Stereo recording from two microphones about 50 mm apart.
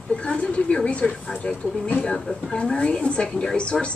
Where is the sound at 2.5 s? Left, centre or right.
Left.